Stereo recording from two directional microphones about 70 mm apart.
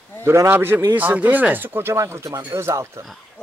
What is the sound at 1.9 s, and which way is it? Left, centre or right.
Speech, right.